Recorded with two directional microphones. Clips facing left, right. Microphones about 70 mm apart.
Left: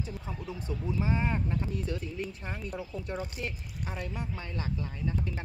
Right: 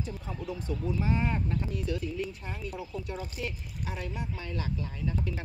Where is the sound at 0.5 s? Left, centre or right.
Left.